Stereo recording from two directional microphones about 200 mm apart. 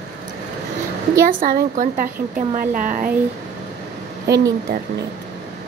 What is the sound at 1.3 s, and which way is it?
Speech, 45° right (ahead or behind).